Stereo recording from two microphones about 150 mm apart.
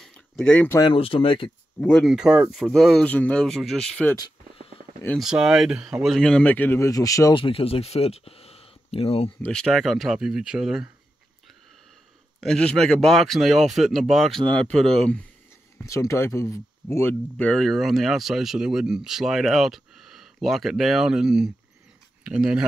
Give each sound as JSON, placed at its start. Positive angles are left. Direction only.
{"t": 0.0, "sound": "a sound", "side_deg": 5}
{"t": 0.7, "sound": "speech", "side_deg": 35}
{"t": 1.8, "sound": "speech", "side_deg": 5}
{"t": 2.0, "sound": "speech", "side_deg": -5}
{"t": 5.2, "sound": "speech", "side_deg": -5}
{"t": 7.3, "sound": "speech", "side_deg": 35}
{"t": 9.4, "sound": "speech", "side_deg": 5}
{"t": 12.4, "sound": "speech", "side_deg": 5}
{"t": 15.8, "sound": "speech", "side_deg": 20}